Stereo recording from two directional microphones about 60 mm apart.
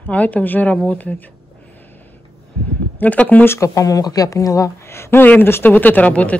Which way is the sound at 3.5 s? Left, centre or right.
Left.